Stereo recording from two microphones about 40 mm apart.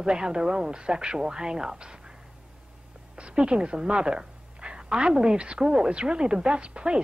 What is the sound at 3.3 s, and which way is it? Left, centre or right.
A woman's voice, right.